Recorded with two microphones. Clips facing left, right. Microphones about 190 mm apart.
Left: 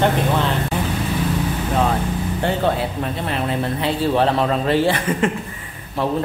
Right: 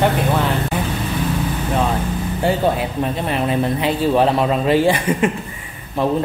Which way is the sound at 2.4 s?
10° right (ahead or behind).